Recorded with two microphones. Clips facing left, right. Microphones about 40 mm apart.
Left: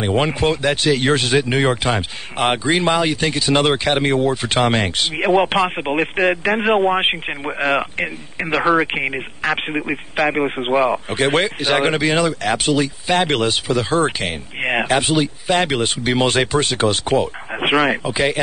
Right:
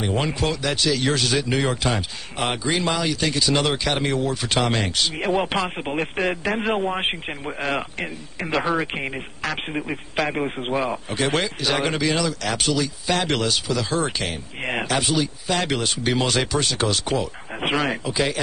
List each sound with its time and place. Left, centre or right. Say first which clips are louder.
0.0 s speech: left 6 dB; left